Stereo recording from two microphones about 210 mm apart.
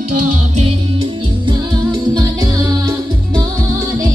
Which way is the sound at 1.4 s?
20° right (ahead or behind).